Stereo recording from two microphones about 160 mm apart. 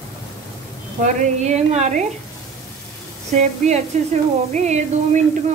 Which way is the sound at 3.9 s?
45° right (ahead or behind).